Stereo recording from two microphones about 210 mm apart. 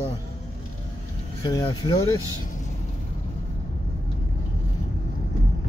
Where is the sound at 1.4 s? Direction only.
20° left (ahead or behind).